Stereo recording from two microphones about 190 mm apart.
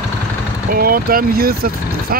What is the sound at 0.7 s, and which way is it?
Speech, 50° right (ahead or behind).